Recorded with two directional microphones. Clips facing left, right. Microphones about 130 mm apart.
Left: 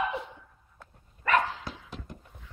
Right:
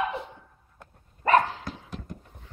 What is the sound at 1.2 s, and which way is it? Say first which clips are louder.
Dog: right 5 dB; 35° right (ahead or behind).